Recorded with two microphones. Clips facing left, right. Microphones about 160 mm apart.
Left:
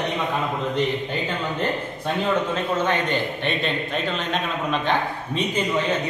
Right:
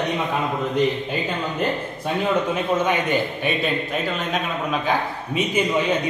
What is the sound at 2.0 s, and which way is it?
A man's voice, 10° right (ahead or behind).